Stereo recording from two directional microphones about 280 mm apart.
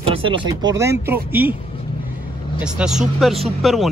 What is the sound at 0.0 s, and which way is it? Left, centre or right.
Speech, centre.